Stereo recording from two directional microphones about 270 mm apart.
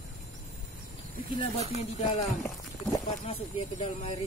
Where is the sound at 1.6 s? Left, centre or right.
Right.